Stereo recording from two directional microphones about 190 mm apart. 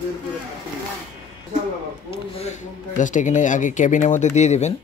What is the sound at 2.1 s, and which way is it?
Speech, 30° left (ahead or behind).